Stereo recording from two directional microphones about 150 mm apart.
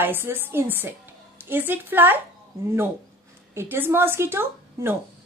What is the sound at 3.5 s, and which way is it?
A woman's voice, 15° right (ahead or behind).